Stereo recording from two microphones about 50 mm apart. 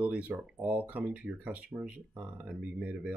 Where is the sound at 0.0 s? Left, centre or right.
Right.